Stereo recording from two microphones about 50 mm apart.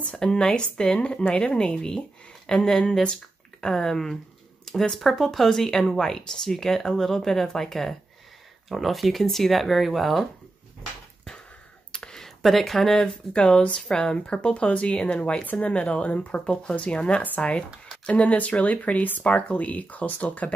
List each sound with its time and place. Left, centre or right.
0.2 s speech: centre
11.9 s a sound: centre
12.4 s speech: centre
13.0 s speech: centre
15.4 s speech: left